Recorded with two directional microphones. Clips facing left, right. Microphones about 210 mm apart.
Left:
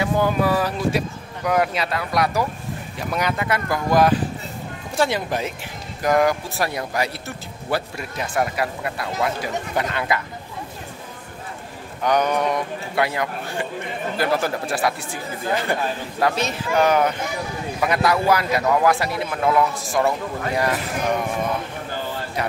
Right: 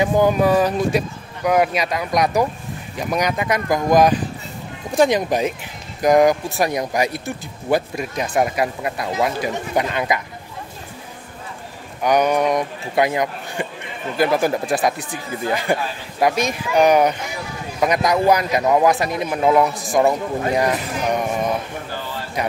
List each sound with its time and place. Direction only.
0.0 s speech: 20° right (ahead or behind)
12.0 s a man's voice: 10° right (ahead or behind)
22.4 s speech: 15° right (ahead or behind)